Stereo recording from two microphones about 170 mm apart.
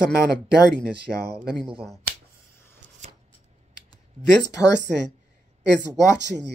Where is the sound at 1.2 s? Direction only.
70° right (ahead or behind).